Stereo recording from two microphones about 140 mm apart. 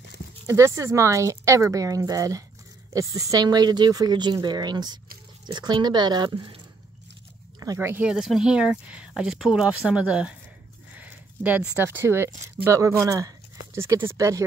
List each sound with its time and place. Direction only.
0.5 s a woman's voice: 20° right (ahead or behind)
7.6 s a woman's voice: 20° right (ahead or behind)